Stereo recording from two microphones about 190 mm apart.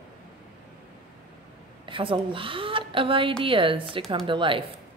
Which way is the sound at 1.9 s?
25° right (ahead or behind).